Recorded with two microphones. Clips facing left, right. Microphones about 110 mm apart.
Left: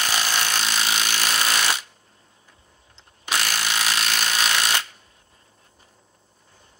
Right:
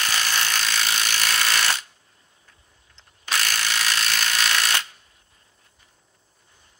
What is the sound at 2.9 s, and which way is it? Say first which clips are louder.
Tools: left 1 dB; 20° left (ahead or behind).